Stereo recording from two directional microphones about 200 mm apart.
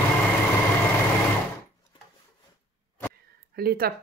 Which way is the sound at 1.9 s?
25° left (ahead or behind).